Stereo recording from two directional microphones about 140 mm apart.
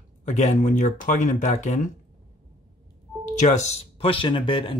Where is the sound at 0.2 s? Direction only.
60° left (ahead or behind).